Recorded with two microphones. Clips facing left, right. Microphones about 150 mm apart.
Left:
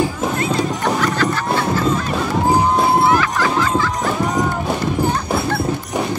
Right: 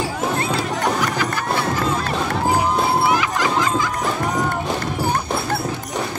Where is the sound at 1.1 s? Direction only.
15° right (ahead or behind).